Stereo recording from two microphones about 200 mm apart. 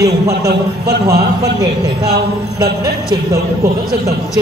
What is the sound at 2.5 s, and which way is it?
Speech, 20° right (ahead or behind).